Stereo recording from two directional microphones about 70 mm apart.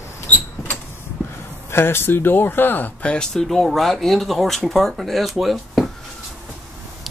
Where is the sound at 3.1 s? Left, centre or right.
Centre.